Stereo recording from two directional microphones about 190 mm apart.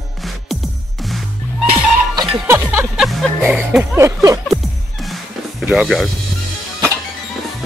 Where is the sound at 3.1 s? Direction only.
Centre (ahead or behind).